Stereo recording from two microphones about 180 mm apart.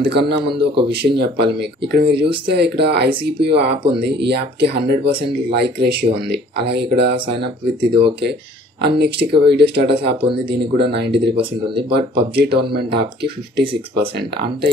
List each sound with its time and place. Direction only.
0.0 s speech: 65° right (ahead or behind)